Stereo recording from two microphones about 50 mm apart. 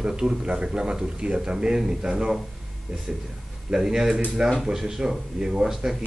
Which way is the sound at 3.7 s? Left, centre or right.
Centre.